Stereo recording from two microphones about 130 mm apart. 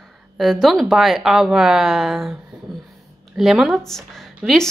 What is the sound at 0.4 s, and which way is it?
A woman's voice, centre (ahead or behind).